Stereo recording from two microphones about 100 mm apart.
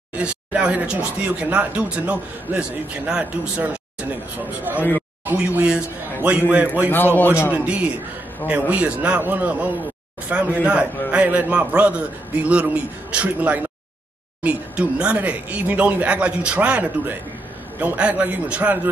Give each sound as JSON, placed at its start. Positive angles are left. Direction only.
{"t": 0.1, "sound": "speech", "side_deg": -10}
{"t": 6.9, "sound": "a man's voice", "side_deg": 20}
{"t": 7.5, "sound": "speech", "side_deg": -15}